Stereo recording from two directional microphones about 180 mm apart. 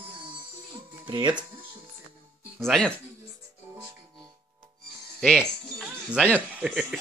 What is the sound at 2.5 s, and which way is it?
Speech, 5° left (ahead or behind).